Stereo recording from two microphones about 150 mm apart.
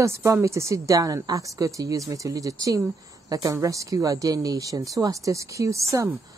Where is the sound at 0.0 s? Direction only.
20° right (ahead or behind).